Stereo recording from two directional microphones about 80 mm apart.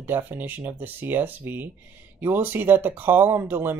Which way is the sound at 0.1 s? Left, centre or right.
Right.